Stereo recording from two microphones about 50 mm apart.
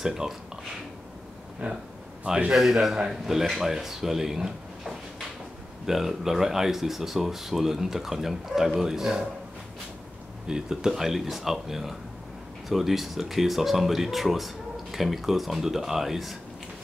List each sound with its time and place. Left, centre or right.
0.0 s speech: centre
1.6 s speech: right
10.4 s speech: centre